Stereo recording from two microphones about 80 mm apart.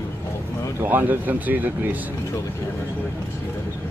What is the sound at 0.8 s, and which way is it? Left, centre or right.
Speech, right.